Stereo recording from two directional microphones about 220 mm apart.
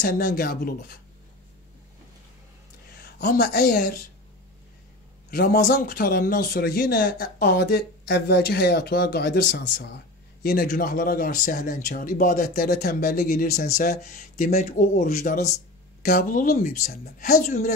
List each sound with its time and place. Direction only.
0.0 s speech: 45° left (ahead or behind)
3.0 s a woman's voice: 45° left (ahead or behind)
5.3 s a man's voice: 45° left (ahead or behind)